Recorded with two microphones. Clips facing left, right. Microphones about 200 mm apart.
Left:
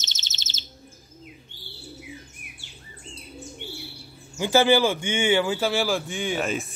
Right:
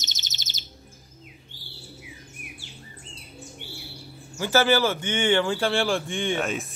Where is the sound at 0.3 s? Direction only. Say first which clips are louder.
Even; 15° right (ahead or behind).